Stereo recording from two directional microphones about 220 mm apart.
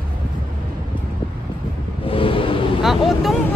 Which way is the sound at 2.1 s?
25° left (ahead or behind).